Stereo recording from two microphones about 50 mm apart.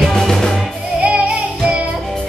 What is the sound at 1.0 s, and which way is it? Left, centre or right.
Music, right.